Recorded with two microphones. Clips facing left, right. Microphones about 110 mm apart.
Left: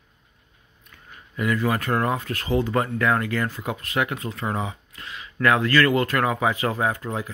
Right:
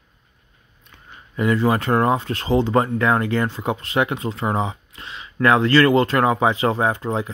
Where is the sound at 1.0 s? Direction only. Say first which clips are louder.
Right 5 dB; 30° right (ahead or behind).